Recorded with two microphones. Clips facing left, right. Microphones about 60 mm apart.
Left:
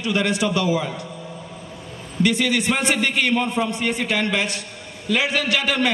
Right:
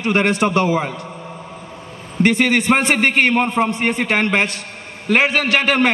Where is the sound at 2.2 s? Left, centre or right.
Right.